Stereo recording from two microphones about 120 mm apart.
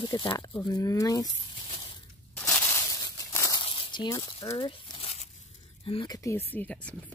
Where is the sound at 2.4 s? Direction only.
25° left (ahead or behind).